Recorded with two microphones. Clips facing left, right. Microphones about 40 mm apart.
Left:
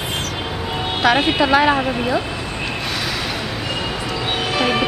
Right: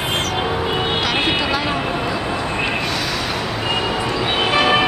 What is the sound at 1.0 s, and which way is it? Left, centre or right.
A woman's voice, centre.